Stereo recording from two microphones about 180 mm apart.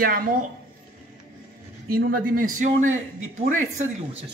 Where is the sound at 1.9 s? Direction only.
55° right (ahead or behind).